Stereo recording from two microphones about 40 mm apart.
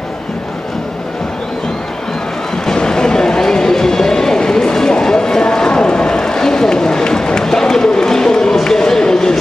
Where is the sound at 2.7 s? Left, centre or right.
Centre.